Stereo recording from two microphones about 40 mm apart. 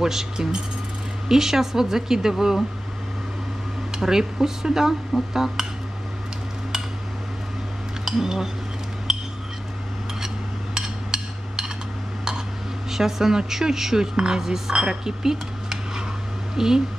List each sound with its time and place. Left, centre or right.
0.0 s speech: centre
4.0 s speech: centre
8.0 s speech: centre
10.2 s a sound: centre
12.9 s speech: centre